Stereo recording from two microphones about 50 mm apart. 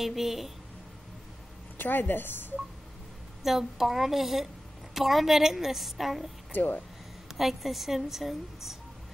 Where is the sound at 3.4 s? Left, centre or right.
Centre.